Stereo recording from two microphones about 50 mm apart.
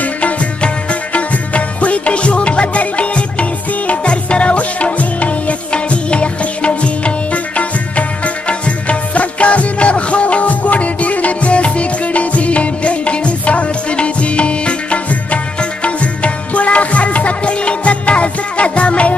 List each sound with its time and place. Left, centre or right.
0.0 s music: left